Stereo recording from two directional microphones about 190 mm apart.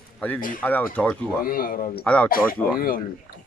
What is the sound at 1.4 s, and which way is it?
Speech, 50° left (ahead or behind).